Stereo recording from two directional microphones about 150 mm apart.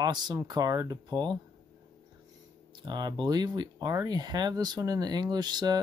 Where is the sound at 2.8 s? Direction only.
30° right (ahead or behind).